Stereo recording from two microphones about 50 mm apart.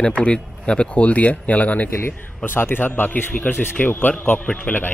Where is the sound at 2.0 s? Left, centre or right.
Left.